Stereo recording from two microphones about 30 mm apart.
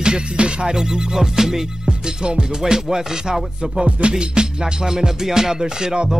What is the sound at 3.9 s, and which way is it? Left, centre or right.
Music, right.